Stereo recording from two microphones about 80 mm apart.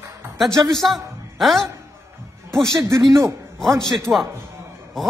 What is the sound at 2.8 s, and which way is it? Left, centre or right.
Speech, right.